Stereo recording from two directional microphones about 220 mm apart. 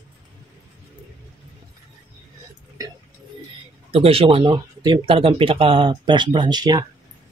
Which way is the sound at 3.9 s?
25° right (ahead or behind).